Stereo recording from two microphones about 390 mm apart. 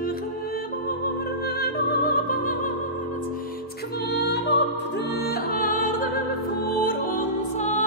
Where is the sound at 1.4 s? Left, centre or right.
Left.